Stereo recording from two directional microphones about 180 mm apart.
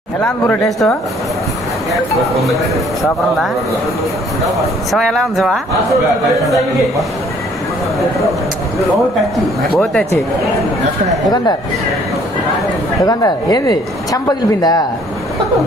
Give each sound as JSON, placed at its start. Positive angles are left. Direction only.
{"t": 0.2, "sound": "a man's voice", "side_deg": 0}
{"t": 2.4, "sound": "a man's voice", "side_deg": 0}
{"t": 4.9, "sound": "a man's voice", "side_deg": 0}
{"t": 9.8, "sound": "speech", "side_deg": 10}
{"t": 13.0, "sound": "a woman's voice", "side_deg": 20}